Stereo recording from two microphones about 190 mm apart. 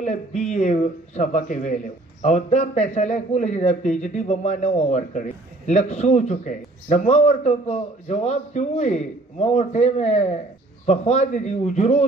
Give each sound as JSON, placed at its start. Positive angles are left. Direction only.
{"t": 0.0, "sound": "a man's voice", "side_deg": 40}